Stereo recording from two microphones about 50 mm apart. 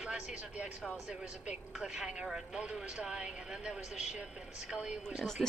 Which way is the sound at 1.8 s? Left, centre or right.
Centre.